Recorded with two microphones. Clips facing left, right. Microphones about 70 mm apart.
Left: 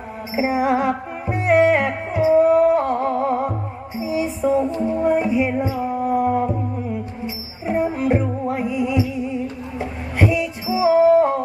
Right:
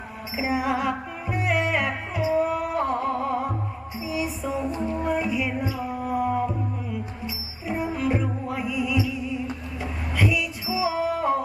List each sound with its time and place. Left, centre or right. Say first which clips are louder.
0.4 s music: left 6 dB; left